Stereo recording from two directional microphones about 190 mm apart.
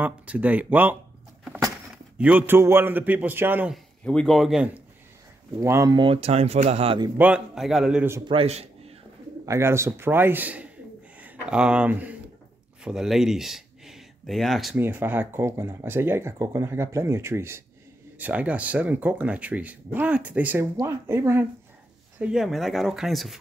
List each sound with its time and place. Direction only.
0.0 s speech: 10° right (ahead or behind)
2.1 s speech: 10° right (ahead or behind)
4.0 s speech: 5° left (ahead or behind); by 7.1 s 30° right (ahead or behind)
7.2 s speech: 5° right (ahead or behind)
8.3 s a man's voice: 30° right (ahead or behind)
9.5 s speech: 15° right (ahead or behind)
14.8 s speech: 10° right (ahead or behind)
22.2 s speech: centre (ahead or behind)